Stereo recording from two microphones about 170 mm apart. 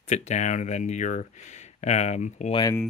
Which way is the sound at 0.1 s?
45° left (ahead or behind).